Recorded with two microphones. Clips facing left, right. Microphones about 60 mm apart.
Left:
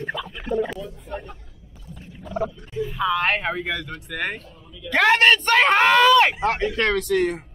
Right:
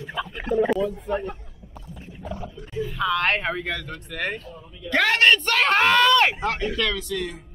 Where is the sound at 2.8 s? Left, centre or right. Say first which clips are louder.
Left 1 dB; centre.